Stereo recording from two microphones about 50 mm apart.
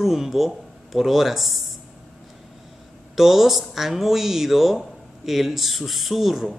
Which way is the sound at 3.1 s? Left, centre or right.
Centre.